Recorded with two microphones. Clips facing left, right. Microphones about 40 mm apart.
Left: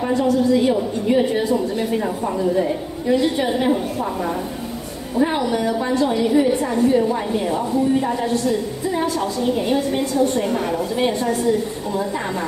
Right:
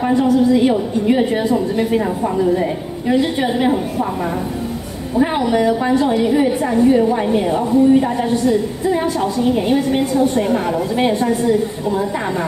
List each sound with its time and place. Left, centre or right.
0.0 s a woman's voice: right